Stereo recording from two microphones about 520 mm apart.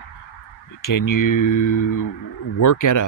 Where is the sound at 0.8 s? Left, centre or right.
Left.